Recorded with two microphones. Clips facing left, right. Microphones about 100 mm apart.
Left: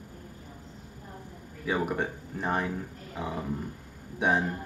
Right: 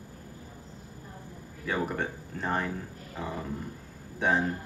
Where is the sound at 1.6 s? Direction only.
15° left (ahead or behind).